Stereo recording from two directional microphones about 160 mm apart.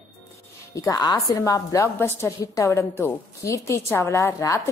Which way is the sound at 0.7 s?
20° left (ahead or behind).